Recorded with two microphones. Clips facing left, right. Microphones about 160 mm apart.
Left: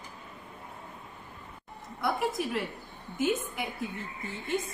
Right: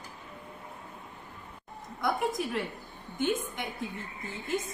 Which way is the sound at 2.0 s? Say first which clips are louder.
Even; centre (ahead or behind).